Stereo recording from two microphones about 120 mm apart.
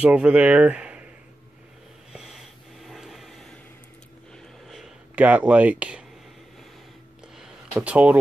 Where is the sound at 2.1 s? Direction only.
5° right (ahead or behind).